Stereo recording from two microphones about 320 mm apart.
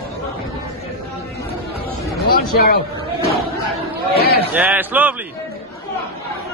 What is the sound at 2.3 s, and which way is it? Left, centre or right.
Speech, left.